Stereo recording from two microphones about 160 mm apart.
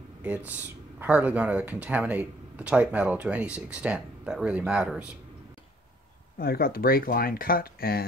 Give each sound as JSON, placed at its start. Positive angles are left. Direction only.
{"t": 0.2, "sound": "speech", "side_deg": -10}
{"t": 6.3, "sound": "speech", "side_deg": 70}